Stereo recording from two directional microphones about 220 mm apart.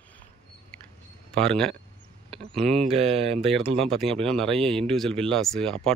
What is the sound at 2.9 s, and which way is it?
Speech, 30° right (ahead or behind).